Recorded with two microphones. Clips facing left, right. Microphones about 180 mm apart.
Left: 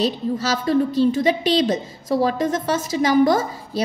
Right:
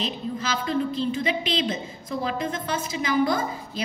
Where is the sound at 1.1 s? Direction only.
40° left (ahead or behind).